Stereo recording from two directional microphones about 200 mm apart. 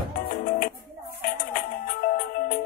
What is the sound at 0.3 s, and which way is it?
Music, 45° left (ahead or behind).